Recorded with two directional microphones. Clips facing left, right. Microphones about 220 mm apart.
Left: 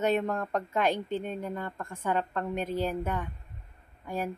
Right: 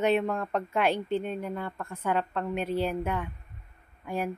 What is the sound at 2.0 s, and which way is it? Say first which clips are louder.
A woman's voice: right 1 dB; 10° right (ahead or behind).